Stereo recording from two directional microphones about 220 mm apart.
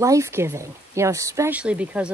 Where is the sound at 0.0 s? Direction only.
15° right (ahead or behind).